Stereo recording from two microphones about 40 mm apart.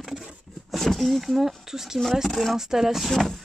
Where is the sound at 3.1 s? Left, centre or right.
Centre.